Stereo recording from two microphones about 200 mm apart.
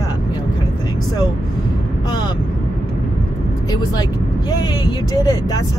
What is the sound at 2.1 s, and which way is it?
Speech, 20° left (ahead or behind).